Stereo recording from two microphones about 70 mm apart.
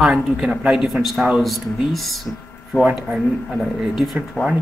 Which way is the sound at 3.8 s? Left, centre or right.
Centre.